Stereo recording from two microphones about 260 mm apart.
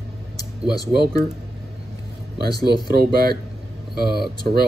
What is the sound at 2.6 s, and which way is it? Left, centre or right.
Speech, right.